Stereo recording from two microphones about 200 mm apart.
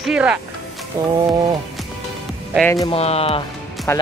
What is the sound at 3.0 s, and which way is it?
Speech, 30° left (ahead or behind).